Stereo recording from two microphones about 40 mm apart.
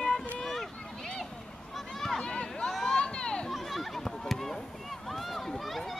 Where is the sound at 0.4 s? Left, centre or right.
Centre.